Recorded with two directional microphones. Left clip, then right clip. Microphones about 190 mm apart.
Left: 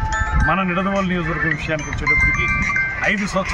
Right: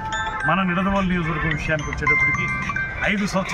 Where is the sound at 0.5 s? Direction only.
Centre (ahead or behind).